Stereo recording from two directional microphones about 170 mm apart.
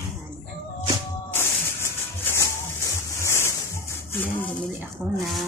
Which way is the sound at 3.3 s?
15° left (ahead or behind).